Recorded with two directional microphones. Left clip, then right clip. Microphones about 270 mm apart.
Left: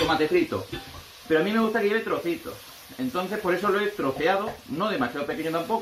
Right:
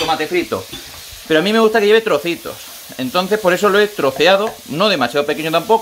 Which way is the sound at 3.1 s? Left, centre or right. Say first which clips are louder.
Right 12 dB; right.